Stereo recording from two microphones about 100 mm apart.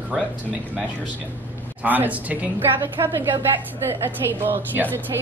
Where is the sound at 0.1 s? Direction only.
5° right (ahead or behind).